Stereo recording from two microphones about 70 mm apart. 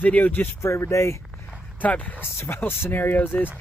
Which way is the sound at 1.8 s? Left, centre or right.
Left.